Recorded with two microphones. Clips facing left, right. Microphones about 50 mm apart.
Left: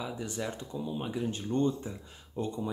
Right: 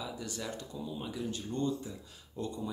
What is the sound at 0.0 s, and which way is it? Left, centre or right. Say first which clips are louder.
Speech: left 4 dB; left.